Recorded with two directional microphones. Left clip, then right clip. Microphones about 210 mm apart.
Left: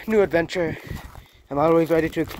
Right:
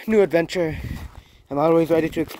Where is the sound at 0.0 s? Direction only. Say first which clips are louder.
Right 2 dB; 35° right (ahead or behind).